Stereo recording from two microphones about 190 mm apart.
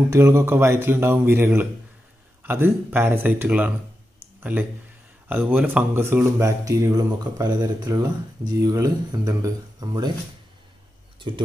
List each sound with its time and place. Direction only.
0.1 s speech: 15° right (ahead or behind)
11.1 s speech: 25° right (ahead or behind)